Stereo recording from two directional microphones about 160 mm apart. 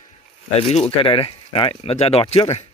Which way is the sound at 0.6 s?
40° left (ahead or behind).